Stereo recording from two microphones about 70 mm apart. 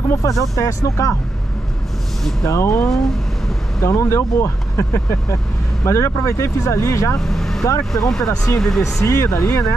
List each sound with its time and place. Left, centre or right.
0.1 s speech: left
2.5 s speech: left
3.8 s speech: left
7.2 s vehicle: centre
7.9 s speech: centre
9.0 s speech: left